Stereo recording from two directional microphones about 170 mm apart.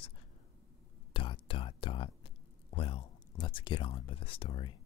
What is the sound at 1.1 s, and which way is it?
Whispering, 30° left (ahead or behind).